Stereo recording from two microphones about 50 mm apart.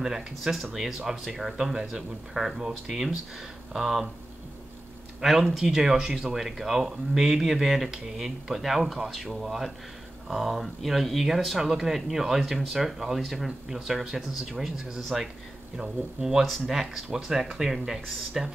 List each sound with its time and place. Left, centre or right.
0.0 s speech: centre
1.8 s speech: centre
5.2 s speech: centre